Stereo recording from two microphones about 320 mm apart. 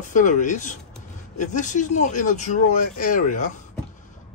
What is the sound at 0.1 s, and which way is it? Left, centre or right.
Speech, left.